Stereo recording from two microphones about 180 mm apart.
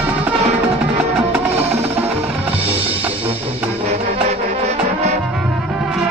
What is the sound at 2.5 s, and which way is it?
Music, 30° right (ahead or behind).